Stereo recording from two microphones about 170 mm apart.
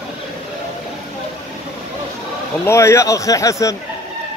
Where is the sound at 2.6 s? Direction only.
15° left (ahead or behind).